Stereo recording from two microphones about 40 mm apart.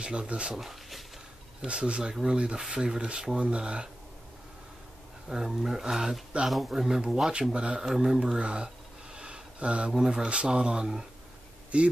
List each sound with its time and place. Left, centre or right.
0.0 s speech: right
0.6 s a sound: centre
1.7 s speech: right
5.3 s speech: centre
6.3 s speech: right
6.7 s speech: centre
7.5 s speech: right
9.1 s a sound: right
9.9 s speech: centre
11.7 s speech: right